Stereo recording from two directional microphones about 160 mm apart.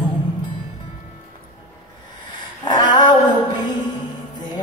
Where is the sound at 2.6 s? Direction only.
25° left (ahead or behind).